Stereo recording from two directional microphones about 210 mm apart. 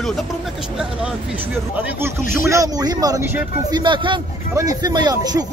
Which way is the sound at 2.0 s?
10° right (ahead or behind).